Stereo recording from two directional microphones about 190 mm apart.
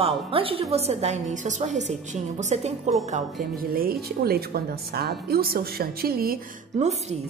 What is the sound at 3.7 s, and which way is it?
Speech, 55° right (ahead or behind).